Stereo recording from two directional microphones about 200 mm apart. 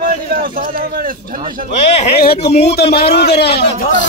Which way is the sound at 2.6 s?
55° left (ahead or behind).